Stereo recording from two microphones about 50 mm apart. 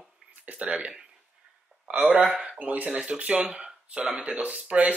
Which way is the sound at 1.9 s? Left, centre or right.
Right.